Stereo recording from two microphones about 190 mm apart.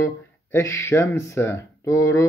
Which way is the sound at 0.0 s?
15° left (ahead or behind).